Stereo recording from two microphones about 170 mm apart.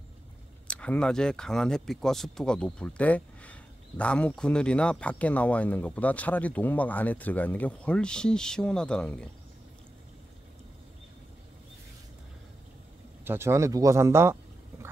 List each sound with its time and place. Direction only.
0.7 s speech: 5° left (ahead or behind)
13.2 s speech: 15° right (ahead or behind)